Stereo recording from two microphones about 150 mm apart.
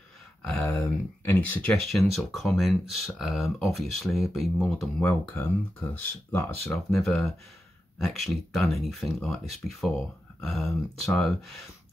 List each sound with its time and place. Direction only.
0.4 s speech: 5° left (ahead or behind)
1.9 s speech: centre (ahead or behind)
5.2 s speech: 15° left (ahead or behind)
6.7 s speech: centre (ahead or behind)